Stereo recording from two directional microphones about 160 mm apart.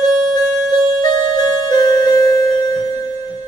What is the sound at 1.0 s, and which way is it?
Music, 25° left (ahead or behind).